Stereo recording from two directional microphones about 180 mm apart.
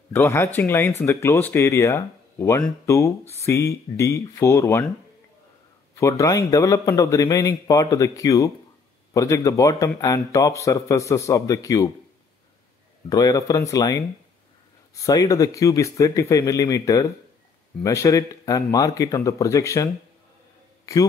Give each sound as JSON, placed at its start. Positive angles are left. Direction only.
{"t": 0.1, "sound": "a man's voice", "side_deg": 15}
{"t": 5.9, "sound": "a man's voice", "side_deg": 15}
{"t": 13.1, "sound": "a man's voice", "side_deg": 20}